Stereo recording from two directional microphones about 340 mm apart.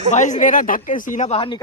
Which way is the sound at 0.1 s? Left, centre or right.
Left.